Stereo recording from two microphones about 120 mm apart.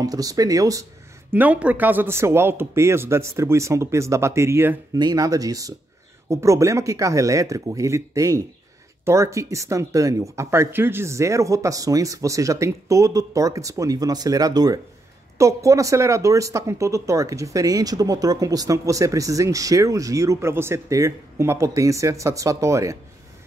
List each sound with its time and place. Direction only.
0.0 s speech: 30° right (ahead or behind)
1.3 s speech: 15° right (ahead or behind)
4.9 s speech: 35° right (ahead or behind)